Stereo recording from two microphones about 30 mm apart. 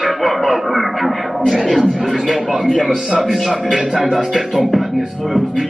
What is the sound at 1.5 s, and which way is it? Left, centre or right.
Speech, centre.